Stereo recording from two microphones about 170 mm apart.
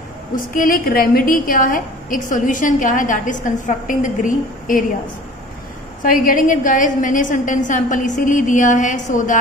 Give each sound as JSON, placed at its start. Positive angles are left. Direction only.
{"t": 0.4, "sound": "a woman's voice", "side_deg": 55}
{"t": 6.0, "sound": "a woman's voice", "side_deg": 55}